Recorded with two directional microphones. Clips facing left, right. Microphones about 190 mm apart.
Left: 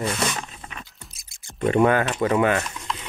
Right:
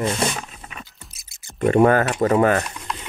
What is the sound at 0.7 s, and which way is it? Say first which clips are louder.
Music: right 1 dB; centre (ahead or behind).